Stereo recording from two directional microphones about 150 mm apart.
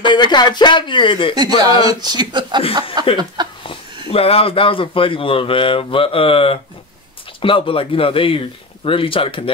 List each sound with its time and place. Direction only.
0.0 s speech: 30° left (ahead or behind)
1.6 s speech: 25° right (ahead or behind)
3.4 s a sound: 30° right (ahead or behind)
4.1 s speech: 40° left (ahead or behind)